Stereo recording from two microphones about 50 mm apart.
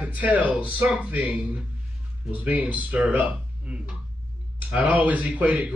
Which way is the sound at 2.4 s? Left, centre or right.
Right.